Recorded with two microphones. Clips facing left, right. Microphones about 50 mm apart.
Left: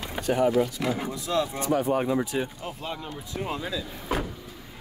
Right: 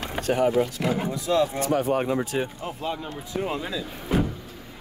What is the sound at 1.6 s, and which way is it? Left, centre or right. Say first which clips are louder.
Speech: right 1 dB; right.